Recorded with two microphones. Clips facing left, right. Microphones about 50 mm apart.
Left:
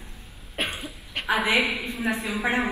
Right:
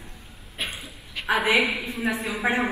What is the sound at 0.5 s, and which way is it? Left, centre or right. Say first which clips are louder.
Cough: left 3 dB; left.